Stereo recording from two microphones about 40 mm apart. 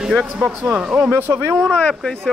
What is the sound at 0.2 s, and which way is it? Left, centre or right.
Speech, centre.